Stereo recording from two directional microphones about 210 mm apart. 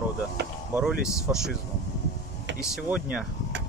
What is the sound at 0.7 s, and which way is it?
Speech, 5° right (ahead or behind).